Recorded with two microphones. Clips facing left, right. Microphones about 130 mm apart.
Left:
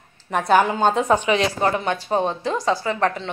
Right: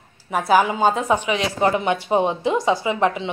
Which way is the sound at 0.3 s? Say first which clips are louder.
Even; 5° right (ahead or behind).